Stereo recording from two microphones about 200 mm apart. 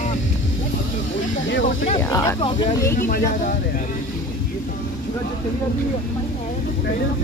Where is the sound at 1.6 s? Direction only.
40° left (ahead or behind).